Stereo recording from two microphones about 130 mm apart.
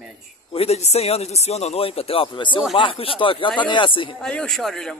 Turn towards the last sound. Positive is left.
turn(degrees=5)  # may be behind; listen again after turning